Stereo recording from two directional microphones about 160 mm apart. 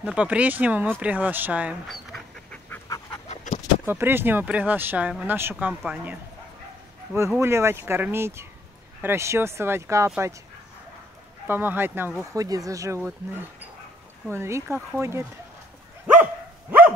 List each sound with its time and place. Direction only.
0.0 s speech: 5° right (ahead or behind)
1.9 s duck: centre (ahead or behind)
3.3 s a sound: 45° left (ahead or behind)
3.8 s speech: 15° right (ahead or behind)
7.2 s speech: 15° right (ahead or behind)
11.4 s speech: 15° right (ahead or behind)